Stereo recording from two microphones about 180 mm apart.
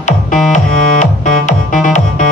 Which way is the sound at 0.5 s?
45° left (ahead or behind).